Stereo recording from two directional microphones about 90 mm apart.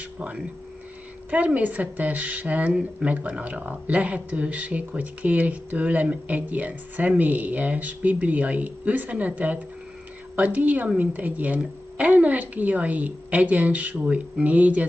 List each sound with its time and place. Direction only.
1.3 s speech: 15° right (ahead or behind)